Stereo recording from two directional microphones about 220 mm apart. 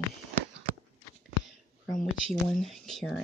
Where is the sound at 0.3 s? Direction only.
40° right (ahead or behind).